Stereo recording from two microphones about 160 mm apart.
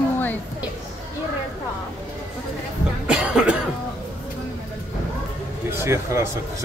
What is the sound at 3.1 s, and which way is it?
Cough, 5° right (ahead or behind).